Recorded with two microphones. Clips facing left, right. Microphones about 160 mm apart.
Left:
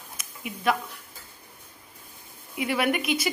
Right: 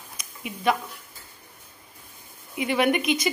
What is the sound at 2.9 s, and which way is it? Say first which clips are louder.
Speech: right 3 dB; 5° left (ahead or behind).